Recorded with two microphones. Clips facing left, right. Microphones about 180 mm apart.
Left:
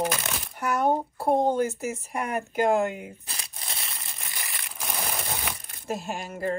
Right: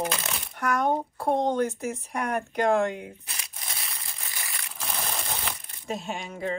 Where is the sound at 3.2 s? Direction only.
30° left (ahead or behind).